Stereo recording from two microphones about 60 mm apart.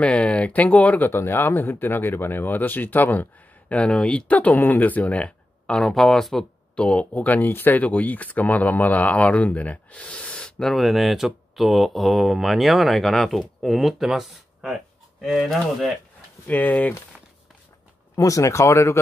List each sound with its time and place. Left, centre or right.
0.0 s speech: centre
5.8 s speech: centre
6.7 s speech: centre
10.7 s speech: centre
16.4 s speech: left
18.1 s speech: left